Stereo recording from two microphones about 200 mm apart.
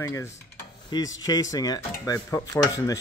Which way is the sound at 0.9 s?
20° left (ahead or behind).